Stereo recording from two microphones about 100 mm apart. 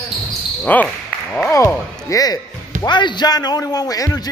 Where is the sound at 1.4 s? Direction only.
25° left (ahead or behind).